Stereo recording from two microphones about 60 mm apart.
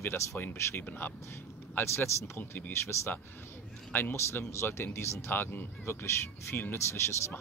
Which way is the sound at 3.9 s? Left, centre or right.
Left.